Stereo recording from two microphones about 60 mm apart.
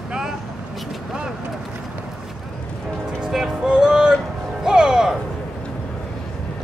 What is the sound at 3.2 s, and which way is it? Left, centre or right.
Music, centre.